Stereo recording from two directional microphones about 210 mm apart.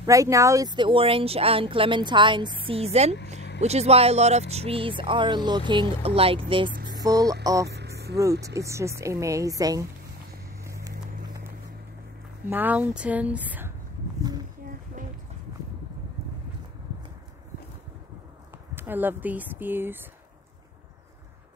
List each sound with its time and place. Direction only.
0.0 s a woman's voice: 15° right (ahead or behind)
10.6 s vehicle: 15° right (ahead or behind)
12.4 s a woman's voice: 10° right (ahead or behind)
18.8 s a woman's voice: 10° right (ahead or behind)